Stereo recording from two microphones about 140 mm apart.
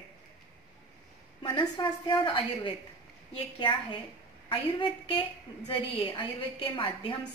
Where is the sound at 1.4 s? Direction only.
35° left (ahead or behind).